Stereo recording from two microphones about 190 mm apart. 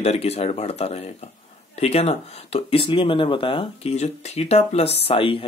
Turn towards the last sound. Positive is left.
turn(degrees=30)  # may be behind; listen again after turning